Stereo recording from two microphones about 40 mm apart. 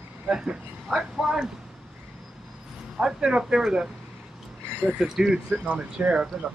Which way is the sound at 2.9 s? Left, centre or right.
Right.